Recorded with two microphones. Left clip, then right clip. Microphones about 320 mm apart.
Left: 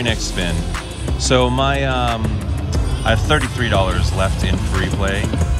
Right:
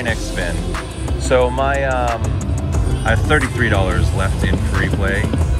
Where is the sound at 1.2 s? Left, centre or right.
Centre.